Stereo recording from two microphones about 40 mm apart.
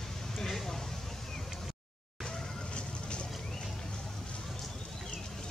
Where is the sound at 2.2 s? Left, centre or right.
Left.